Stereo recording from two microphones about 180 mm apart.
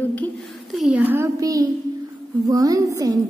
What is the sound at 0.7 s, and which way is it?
A child's voice, 5° right (ahead or behind).